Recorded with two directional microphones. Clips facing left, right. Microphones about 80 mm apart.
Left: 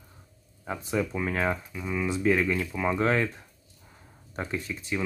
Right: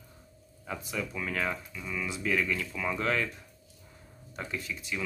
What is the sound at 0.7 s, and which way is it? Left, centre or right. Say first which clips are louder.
Speech: left 7 dB; left.